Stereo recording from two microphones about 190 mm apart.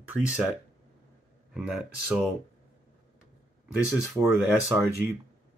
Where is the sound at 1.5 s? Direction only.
5° right (ahead or behind).